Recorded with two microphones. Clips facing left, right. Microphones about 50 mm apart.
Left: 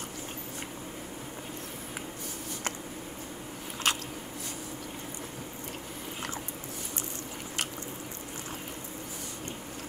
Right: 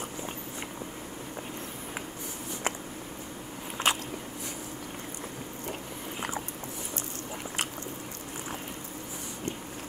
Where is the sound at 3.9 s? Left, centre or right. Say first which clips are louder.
Right 2 dB; right.